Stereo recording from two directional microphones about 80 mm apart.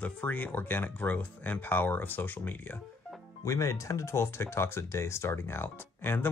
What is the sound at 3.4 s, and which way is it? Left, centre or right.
Speech, left.